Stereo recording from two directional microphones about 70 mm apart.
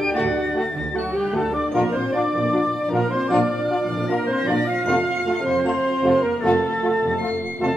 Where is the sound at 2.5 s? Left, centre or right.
Centre.